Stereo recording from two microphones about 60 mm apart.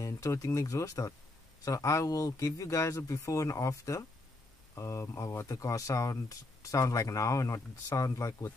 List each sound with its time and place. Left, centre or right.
0.0 s a man's voice: left
5.5 s speech: left